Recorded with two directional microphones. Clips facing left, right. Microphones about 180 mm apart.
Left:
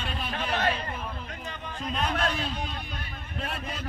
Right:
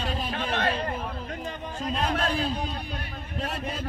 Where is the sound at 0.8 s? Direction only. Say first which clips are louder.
Right 4 dB; 40° right (ahead or behind).